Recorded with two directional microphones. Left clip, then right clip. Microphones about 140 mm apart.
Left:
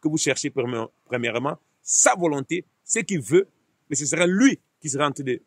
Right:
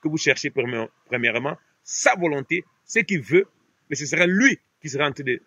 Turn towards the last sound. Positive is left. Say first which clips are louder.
# right 1 dB
turn(degrees=25)  # may be behind; listen again after turning